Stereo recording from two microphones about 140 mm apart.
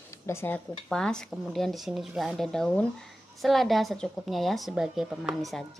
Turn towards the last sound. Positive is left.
turn(degrees=0)  # may be behind; listen again after turning